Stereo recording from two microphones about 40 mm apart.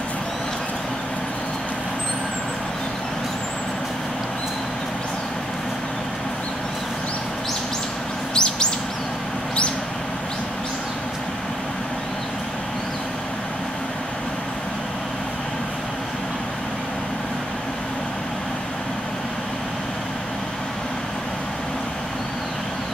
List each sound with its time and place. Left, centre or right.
8.4 s bird: centre